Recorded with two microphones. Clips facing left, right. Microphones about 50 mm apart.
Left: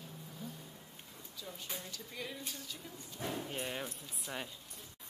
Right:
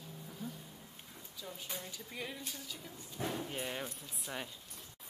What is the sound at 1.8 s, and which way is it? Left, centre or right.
Speech, centre.